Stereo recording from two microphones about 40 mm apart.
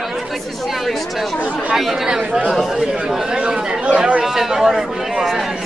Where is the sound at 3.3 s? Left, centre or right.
Right.